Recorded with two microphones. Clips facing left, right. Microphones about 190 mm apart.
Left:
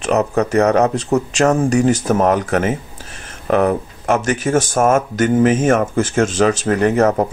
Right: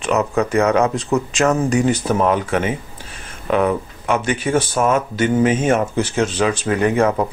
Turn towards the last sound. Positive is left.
turn(degrees=40)  # may be behind; listen again after turning